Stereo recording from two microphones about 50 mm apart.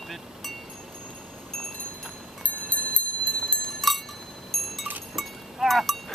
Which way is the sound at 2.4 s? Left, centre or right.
Left.